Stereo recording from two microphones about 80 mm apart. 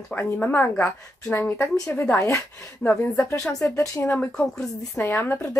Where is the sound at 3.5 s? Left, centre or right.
Left.